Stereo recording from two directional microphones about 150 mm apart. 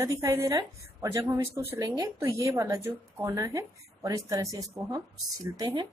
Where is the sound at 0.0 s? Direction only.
20° right (ahead or behind).